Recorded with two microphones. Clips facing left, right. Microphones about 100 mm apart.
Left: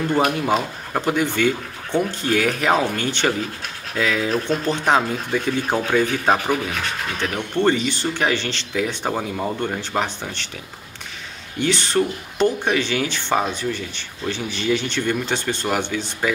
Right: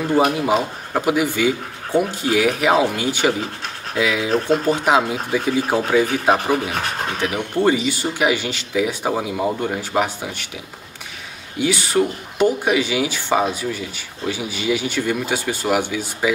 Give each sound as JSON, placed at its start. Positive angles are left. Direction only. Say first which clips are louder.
{"t": 0.1, "sound": "speech", "louder": "right 3 dB", "side_deg": -10}
{"t": 6.3, "sound": "rub", "louder": "right 2 dB", "side_deg": -35}
{"t": 7.2, "sound": "speech", "louder": "right 1 dB", "side_deg": -10}
{"t": 11.5, "sound": "speech", "louder": "right 1 dB", "side_deg": -10}